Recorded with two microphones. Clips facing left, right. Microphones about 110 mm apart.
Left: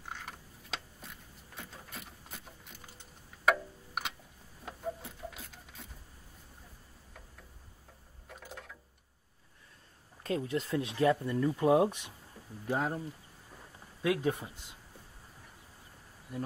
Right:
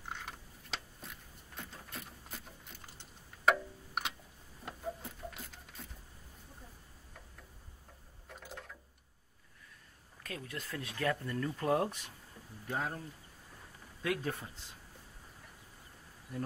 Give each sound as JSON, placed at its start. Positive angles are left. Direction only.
{"t": 0.0, "sound": "mechanisms", "side_deg": 0}
{"t": 4.6, "sound": "printer", "side_deg": 0}
{"t": 8.3, "sound": "a sound", "side_deg": 0}
{"t": 10.2, "sound": "speech", "side_deg": 25}
{"t": 14.0, "sound": "speech", "side_deg": 15}